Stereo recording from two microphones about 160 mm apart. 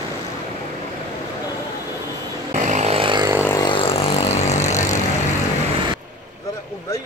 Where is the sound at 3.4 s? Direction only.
20° left (ahead or behind).